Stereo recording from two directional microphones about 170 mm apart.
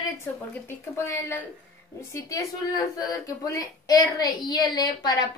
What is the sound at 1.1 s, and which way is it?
A woman's voice, 15° left (ahead or behind).